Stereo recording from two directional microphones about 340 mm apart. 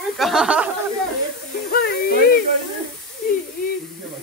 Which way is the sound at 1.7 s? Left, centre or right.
Left.